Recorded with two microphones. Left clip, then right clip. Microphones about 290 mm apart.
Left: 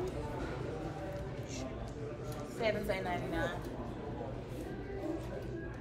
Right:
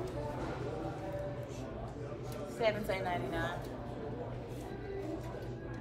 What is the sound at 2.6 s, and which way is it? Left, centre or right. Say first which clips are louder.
Speech: right 1 dB; centre.